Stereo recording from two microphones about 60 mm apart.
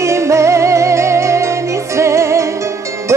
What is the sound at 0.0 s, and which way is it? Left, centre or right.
Music, right.